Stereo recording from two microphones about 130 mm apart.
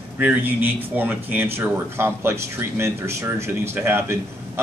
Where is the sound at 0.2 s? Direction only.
15° right (ahead or behind).